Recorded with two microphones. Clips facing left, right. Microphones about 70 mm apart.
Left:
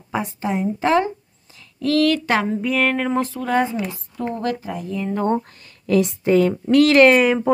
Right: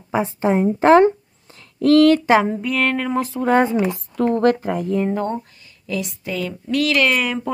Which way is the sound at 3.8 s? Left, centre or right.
Right.